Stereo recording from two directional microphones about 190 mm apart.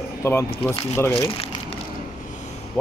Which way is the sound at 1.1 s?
30° left (ahead or behind).